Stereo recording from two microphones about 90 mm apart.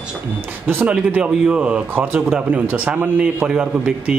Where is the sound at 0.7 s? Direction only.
20° right (ahead or behind).